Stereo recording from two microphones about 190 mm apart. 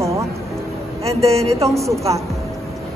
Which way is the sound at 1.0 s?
15° right (ahead or behind).